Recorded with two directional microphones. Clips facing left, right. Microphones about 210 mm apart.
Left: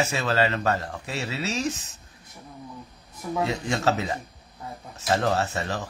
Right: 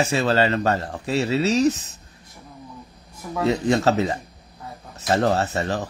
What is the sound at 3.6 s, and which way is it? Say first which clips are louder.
Speech: right 6 dB; 35° right (ahead or behind).